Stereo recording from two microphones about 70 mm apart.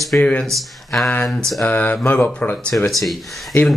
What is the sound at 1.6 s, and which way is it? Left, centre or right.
Speech, left.